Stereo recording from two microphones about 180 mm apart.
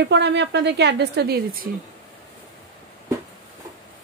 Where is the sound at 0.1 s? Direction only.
75° right (ahead or behind); by 1.7 s 60° right (ahead or behind).